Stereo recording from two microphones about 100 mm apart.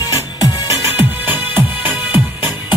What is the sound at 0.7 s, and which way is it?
Music, 20° right (ahead or behind).